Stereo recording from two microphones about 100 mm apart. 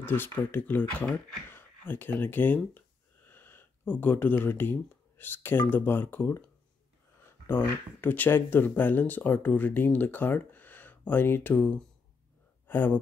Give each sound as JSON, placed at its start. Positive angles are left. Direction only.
{"t": 0.0, "sound": "speech", "side_deg": 20}